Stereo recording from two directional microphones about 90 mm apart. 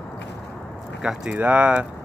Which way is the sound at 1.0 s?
15° right (ahead or behind).